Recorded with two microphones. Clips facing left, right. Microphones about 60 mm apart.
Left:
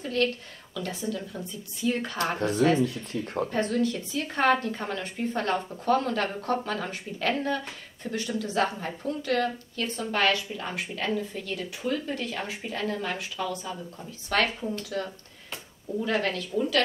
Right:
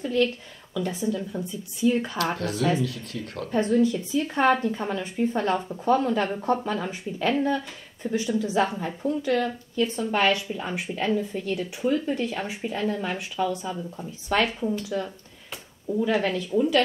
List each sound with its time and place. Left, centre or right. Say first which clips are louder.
0.0 s a sound: right 3 dB; centre
1.1 s a woman's voice: right 5 dB; centre
2.3 s speech: left 6 dB; left
3.5 s a woman's voice: right 7 dB; centre
15.9 s a woman's voice: right 4 dB; centre